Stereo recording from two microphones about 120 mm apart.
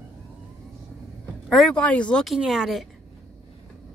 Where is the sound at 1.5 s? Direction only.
5° left (ahead or behind).